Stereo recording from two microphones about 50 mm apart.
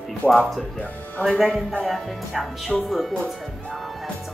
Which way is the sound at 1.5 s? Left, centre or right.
Left.